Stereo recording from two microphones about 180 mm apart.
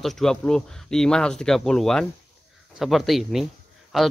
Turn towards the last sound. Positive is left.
turn(degrees=0)  # may be behind; listen again after turning